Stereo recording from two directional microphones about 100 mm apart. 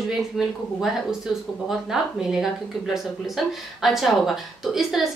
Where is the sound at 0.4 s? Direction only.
Centre (ahead or behind).